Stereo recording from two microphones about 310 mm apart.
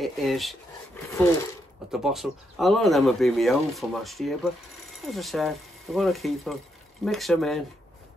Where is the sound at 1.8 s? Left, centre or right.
Centre.